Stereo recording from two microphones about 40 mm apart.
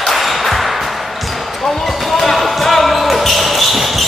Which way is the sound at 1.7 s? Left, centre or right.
Centre.